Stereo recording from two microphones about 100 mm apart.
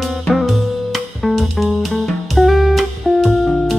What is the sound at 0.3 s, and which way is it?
Music, centre (ahead or behind).